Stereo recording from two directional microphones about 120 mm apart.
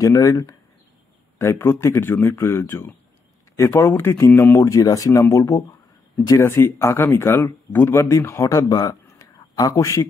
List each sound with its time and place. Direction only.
0.0 s speech: 30° left (ahead or behind)